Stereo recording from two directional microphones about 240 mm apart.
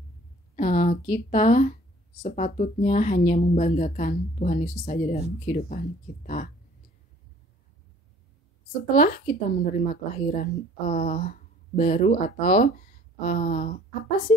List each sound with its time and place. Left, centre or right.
0.6 s a woman's voice: left
8.9 s a woman's voice: left